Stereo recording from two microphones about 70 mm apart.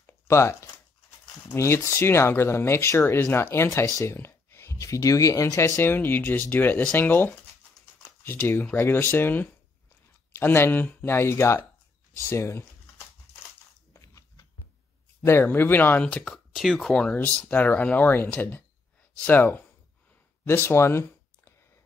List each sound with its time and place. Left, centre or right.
0.0 s a sound: left
1.5 s speech: left
5.8 s speech: left
13.9 s biting: left
15.4 s speech: left
16.0 s speech: centre
16.5 s speech: centre; by 19.6 s left
20.4 s speech: left